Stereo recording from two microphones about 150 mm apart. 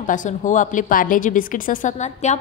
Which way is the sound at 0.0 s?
60° left (ahead or behind).